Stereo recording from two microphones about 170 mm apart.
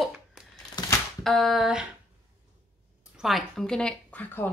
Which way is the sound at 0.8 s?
25° left (ahead or behind).